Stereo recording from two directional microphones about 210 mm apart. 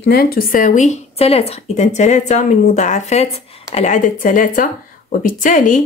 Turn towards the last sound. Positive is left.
turn(degrees=40)  # may be behind; listen again after turning